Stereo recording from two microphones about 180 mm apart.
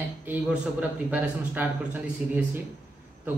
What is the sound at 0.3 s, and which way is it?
A man's voice, 10° right (ahead or behind).